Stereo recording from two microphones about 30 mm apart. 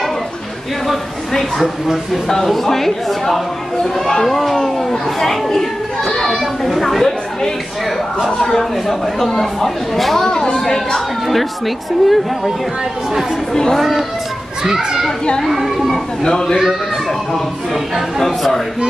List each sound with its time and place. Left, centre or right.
0.8 s speech: centre
8.3 s speech: centre
10.2 s speech: left
11.2 s speech: centre
13.5 s speech: centre
13.7 s speech: centre
15.5 s speech: centre
16.2 s speech: centre
18.2 s speech: centre